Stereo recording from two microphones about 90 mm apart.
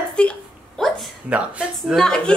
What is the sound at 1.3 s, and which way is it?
Speech, 15° right (ahead or behind).